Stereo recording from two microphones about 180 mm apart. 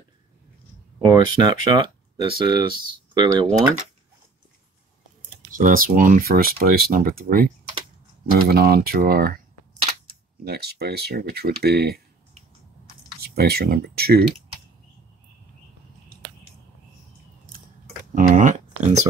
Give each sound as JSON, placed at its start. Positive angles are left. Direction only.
{"t": 1.0, "sound": "speech", "side_deg": -25}
{"t": 5.5, "sound": "speech", "side_deg": -50}
{"t": 10.4, "sound": "speech", "side_deg": -60}
{"t": 13.2, "sound": "speech", "side_deg": -60}
{"t": 18.1, "sound": "a sound", "side_deg": -45}